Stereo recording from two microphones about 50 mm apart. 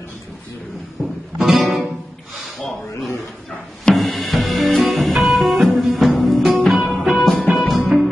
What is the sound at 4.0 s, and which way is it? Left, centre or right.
Music, centre.